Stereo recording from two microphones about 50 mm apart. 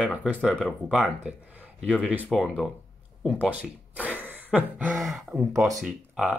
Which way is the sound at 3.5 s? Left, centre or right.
Right.